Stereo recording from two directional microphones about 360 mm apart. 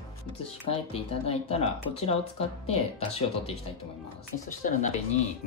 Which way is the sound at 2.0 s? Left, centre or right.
Centre.